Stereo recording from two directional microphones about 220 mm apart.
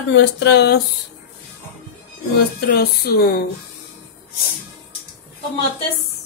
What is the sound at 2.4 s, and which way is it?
A woman's voice, 45° left (ahead or behind).